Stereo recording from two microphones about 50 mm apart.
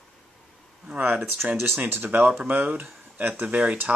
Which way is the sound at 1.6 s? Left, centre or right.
Right.